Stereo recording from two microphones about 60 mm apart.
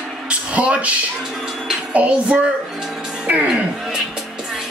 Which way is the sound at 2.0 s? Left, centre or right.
Centre.